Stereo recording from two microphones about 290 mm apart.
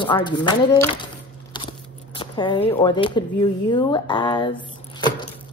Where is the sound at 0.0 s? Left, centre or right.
Centre.